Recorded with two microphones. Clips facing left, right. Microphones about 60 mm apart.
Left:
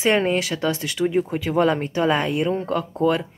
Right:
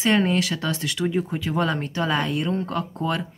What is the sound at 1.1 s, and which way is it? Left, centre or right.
Speech, centre.